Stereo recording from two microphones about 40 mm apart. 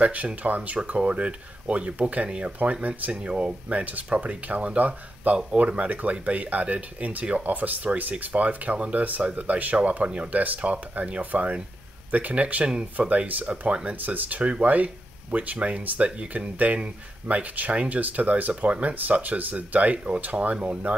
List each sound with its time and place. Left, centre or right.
0.0 s speech: right
3.6 s speech: right
5.9 s speech: right
10.3 s speech: right
14.4 s speech: right